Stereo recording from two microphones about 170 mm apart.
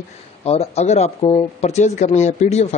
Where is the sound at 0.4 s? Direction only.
35° left (ahead or behind).